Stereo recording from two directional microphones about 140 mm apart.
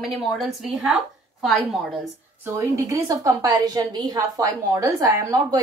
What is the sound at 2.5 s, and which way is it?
A woman's voice, 25° right (ahead or behind).